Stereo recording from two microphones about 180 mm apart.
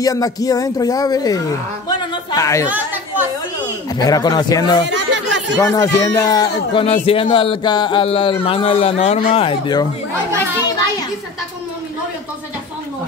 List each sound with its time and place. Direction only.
0.0 s a man's voice: 20° left (ahead or behind)
1.9 s a sound: 20° left (ahead or behind)
2.7 s chatter: 10° right (ahead or behind)
4.0 s a man's voice: 20° left (ahead or behind)
4.8 s chatter: 90° right
5.6 s a man's voice: 15° left (ahead or behind)